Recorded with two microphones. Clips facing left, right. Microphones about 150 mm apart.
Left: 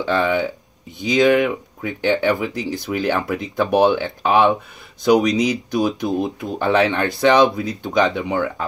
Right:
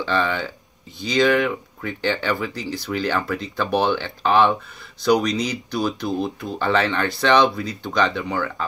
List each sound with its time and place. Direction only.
0.0 s speech: 15° left (ahead or behind)